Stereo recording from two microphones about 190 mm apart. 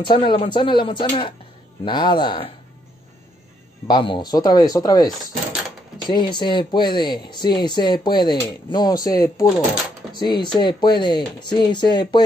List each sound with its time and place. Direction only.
0.0 s speech: 25° left (ahead or behind)
3.8 s speech: 25° left (ahead or behind)